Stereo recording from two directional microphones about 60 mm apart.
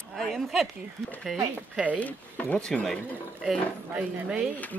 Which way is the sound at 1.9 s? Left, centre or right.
Left.